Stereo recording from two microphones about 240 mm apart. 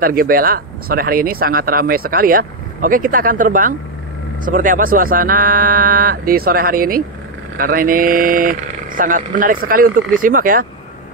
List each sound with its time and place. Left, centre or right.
0.0 s speech: right